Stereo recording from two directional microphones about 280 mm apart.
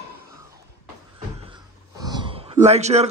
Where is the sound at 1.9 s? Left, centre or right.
Centre.